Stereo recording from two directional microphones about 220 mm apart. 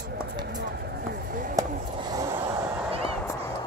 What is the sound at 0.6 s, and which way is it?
Chop, 45° right (ahead or behind).